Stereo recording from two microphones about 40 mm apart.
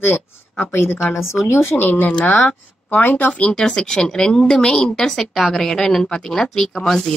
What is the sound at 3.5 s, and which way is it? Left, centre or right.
Speech, centre.